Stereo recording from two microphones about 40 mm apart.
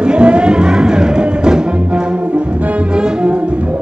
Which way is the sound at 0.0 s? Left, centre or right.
Right.